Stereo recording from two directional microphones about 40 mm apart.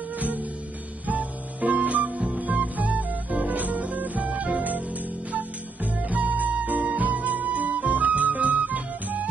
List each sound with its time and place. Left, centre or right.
1.0 s guitar: right
2.4 s music: right
6.0 s music: right